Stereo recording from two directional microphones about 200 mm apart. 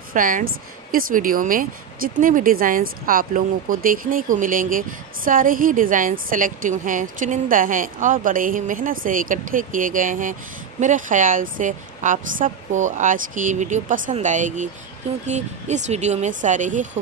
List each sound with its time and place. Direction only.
0.1 s a woman's voice: 40° right (ahead or behind)